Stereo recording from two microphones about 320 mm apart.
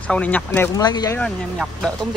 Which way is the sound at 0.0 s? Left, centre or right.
Centre.